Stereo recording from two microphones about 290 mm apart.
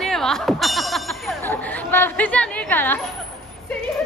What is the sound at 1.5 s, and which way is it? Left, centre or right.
Chatter, centre.